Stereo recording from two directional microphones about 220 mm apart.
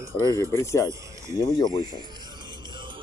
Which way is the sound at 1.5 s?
20° left (ahead or behind).